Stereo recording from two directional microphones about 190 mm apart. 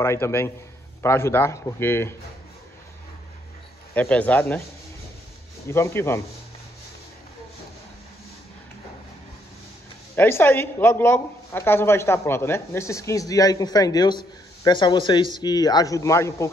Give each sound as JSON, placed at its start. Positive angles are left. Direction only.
{"t": 0.0, "sound": "speech", "side_deg": 15}
{"t": 3.9, "sound": "speech", "side_deg": 10}
{"t": 5.7, "sound": "speech", "side_deg": 15}
{"t": 10.1, "sound": "speech", "side_deg": 10}